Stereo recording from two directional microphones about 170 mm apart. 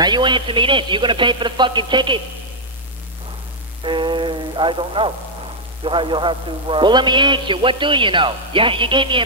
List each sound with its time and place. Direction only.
0.0 s a man's voice: 25° right (ahead or behind)
3.8 s a man's voice: 30° right (ahead or behind)